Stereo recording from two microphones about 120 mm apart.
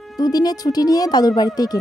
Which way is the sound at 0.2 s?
30° left (ahead or behind).